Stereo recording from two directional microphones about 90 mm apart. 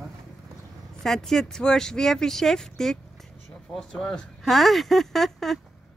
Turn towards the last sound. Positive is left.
turn(degrees=0)  # may be behind; listen again after turning